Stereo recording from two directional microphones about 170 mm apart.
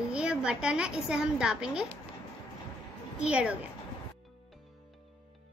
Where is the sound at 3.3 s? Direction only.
5° right (ahead or behind).